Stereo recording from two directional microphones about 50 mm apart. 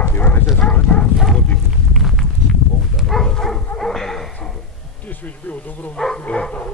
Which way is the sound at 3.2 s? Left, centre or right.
Centre.